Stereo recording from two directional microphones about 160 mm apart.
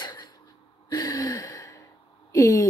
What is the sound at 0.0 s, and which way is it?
Gasp, 30° left (ahead or behind).